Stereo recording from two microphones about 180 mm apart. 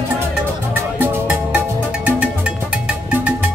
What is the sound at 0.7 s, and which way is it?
Music, 10° right (ahead or behind).